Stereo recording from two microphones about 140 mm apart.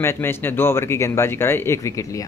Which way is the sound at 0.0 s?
15° left (ahead or behind).